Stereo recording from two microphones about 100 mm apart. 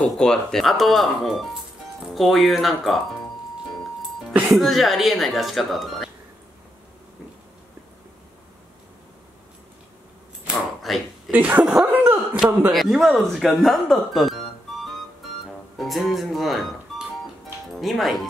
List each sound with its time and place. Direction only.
0.0 s speech: 5° left (ahead or behind)
4.3 s speech: 10° right (ahead or behind)
10.5 s a sound: centre (ahead or behind)
11.3 s speech: 15° right (ahead or behind)
11.8 s a sound: 20° right (ahead or behind)
12.4 s speech: 10° right (ahead or behind)
12.7 s speech: centre (ahead or behind)
15.8 s music: centre (ahead or behind)
17.7 s speech: centre (ahead or behind)